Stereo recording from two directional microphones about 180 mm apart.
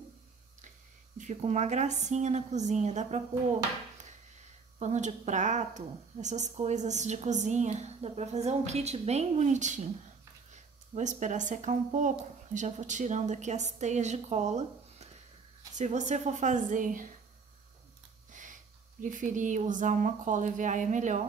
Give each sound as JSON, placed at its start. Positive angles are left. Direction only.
{"t": 1.1, "sound": "a woman's voice", "side_deg": -40}
{"t": 4.7, "sound": "a woman's voice", "side_deg": -40}
{"t": 18.3, "sound": "a sound", "side_deg": -45}
{"t": 18.9, "sound": "speech", "side_deg": -45}